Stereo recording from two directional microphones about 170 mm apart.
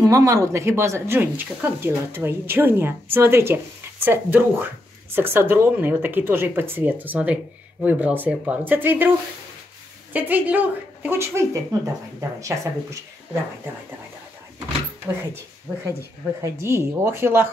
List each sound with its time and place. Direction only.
0.0 s speech: 20° right (ahead or behind)
10.1 s speech: 10° right (ahead or behind)
15.2 s speech: 15° right (ahead or behind)